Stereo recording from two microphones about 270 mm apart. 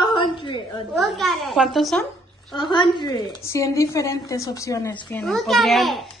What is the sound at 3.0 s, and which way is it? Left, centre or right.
Speech, centre.